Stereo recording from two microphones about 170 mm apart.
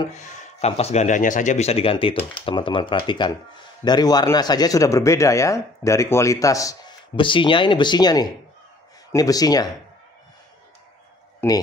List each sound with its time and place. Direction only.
0.1 s speech: 45° left (ahead or behind); by 9.7 s 20° left (ahead or behind)
11.4 s speech: 15° left (ahead or behind)